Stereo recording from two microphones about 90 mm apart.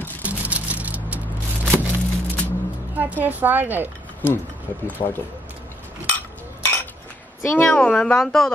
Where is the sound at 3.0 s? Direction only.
20° right (ahead or behind).